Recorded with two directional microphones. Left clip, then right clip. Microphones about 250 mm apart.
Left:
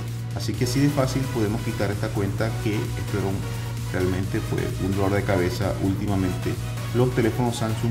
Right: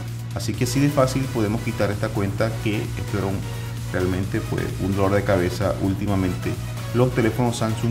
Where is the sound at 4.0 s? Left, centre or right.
Centre.